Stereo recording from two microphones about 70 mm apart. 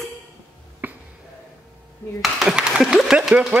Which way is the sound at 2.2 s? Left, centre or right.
Centre.